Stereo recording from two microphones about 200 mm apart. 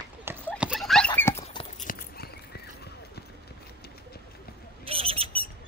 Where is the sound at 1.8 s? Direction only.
45° left (ahead or behind).